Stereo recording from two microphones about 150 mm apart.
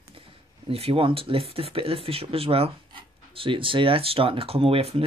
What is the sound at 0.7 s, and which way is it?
Speech, 40° right (ahead or behind).